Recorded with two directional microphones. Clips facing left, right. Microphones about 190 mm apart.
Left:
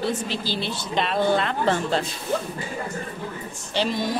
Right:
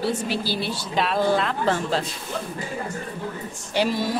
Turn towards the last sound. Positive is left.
turn(degrees=-10)  # may be behind; listen again after turning